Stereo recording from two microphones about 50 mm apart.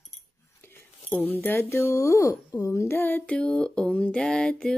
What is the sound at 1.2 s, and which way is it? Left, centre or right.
Speech, left.